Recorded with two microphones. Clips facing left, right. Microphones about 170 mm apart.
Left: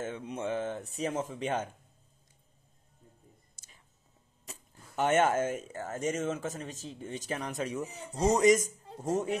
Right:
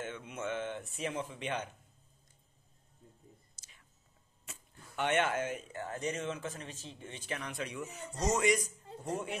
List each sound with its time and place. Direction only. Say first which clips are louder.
0.0 s speech: left 4 dB; 35° left (ahead or behind)
3.6 s whispering: left 3 dB; 55° left (ahead or behind)
4.5 s speech: left 3 dB; 40° left (ahead or behind)